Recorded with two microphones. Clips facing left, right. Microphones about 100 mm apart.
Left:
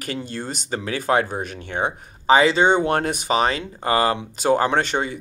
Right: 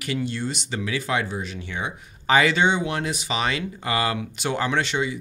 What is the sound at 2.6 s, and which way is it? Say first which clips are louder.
Speech: left 5 dB; 45° left (ahead or behind).